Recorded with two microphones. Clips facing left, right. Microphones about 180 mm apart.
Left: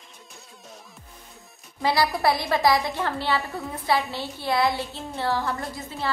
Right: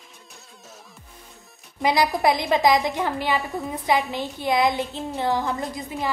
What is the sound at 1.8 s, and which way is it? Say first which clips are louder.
A woman's voice: right 2 dB; 15° right (ahead or behind).